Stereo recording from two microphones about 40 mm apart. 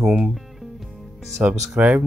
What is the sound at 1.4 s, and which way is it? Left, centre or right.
Speech, right.